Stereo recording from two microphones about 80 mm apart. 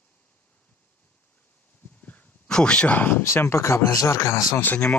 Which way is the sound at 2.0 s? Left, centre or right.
Centre.